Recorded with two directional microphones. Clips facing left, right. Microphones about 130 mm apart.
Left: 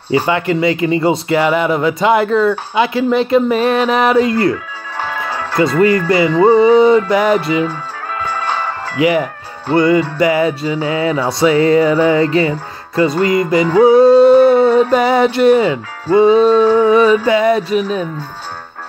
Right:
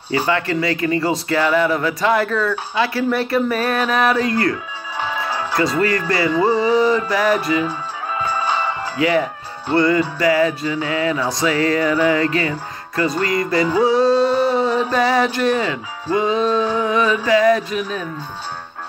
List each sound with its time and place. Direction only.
0.1 s speech: 20° left (ahead or behind)
5.0 s music: 5° right (ahead or behind)
5.6 s speech: 25° left (ahead or behind)
7.6 s music: 5° right (ahead or behind)
8.9 s speech: 20° left (ahead or behind)
13.7 s music: 55° left (ahead or behind)
14.3 s a sound: 55° left (ahead or behind)
15.0 s speech: 25° left (ahead or behind)